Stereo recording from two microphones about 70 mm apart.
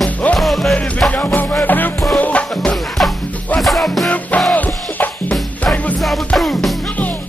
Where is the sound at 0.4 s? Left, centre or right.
Centre.